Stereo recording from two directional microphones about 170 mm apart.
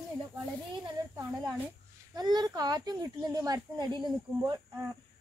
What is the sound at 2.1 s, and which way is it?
Speech, 25° right (ahead or behind).